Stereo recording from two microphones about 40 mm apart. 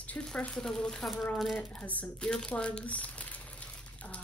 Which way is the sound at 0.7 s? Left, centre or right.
Left.